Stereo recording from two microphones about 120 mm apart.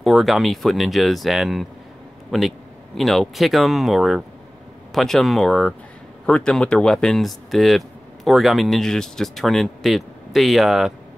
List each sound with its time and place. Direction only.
0.0 s speech: centre (ahead or behind)